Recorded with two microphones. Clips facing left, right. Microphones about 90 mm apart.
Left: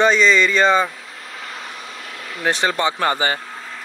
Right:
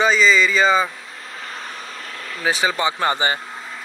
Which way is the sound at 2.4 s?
5° right (ahead or behind).